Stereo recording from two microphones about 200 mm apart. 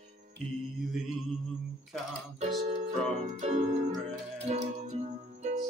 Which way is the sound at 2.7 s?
35° right (ahead or behind).